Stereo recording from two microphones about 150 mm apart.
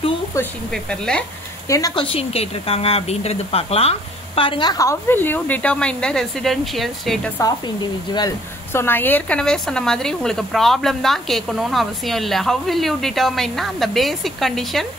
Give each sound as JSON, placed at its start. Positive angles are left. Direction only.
{"t": 0.7, "sound": "speech", "side_deg": 5}
{"t": 1.7, "sound": "speech", "side_deg": 25}
{"t": 2.0, "sound": "speech", "side_deg": 40}
{"t": 7.3, "sound": "speech", "side_deg": 25}
{"t": 8.7, "sound": "speech", "side_deg": 15}